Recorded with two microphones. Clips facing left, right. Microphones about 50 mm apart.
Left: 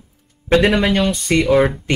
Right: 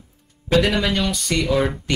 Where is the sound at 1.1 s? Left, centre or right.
Left.